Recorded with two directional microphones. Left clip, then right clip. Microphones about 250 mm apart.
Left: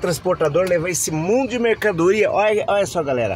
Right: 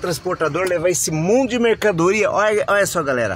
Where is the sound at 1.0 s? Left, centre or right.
Centre.